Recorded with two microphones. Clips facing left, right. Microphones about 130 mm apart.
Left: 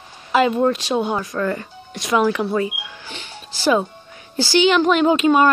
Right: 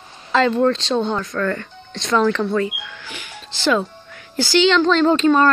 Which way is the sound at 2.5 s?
20° left (ahead or behind).